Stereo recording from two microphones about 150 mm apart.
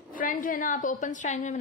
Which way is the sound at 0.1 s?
65° left (ahead or behind).